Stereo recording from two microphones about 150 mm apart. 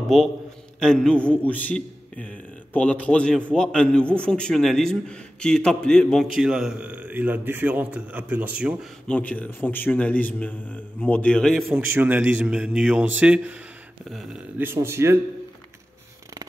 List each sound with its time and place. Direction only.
0.1 s a man's voice: centre (ahead or behind)
9.0 s a man's voice: 5° left (ahead or behind)
11.7 s a man's voice: 10° right (ahead or behind)
14.6 s a man's voice: 15° right (ahead or behind)